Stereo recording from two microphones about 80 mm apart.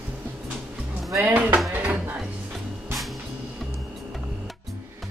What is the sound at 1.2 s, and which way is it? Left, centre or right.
Speech, centre.